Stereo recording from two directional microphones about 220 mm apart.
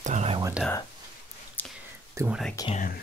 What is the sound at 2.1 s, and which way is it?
Speech, 10° right (ahead or behind).